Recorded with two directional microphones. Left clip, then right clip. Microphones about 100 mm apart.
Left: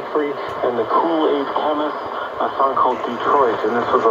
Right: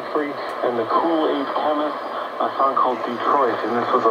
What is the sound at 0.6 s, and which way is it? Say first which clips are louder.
Speech: left 2 dB; 40° left (ahead or behind).